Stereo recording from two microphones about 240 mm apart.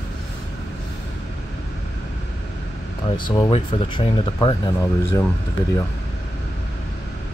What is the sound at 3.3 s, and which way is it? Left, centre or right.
Speech, left.